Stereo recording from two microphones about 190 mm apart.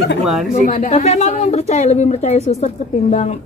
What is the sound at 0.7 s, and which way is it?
A woman's voice, 40° left (ahead or behind).